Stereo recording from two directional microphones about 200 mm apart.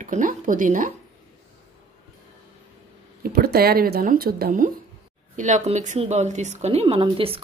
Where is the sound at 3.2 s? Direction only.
50° right (ahead or behind).